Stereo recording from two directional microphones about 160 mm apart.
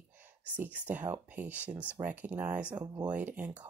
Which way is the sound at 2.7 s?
25° right (ahead or behind).